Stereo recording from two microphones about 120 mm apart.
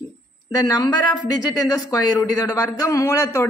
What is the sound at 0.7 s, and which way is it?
A man's voice, 35° left (ahead or behind).